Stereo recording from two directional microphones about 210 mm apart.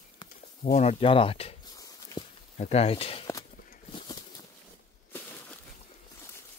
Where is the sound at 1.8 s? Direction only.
15° left (ahead or behind).